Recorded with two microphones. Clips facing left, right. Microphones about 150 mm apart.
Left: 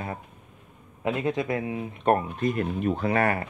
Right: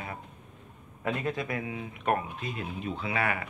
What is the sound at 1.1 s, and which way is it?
Speech, 20° left (ahead or behind).